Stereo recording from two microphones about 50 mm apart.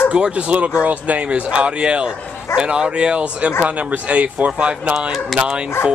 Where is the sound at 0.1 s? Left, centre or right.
Right.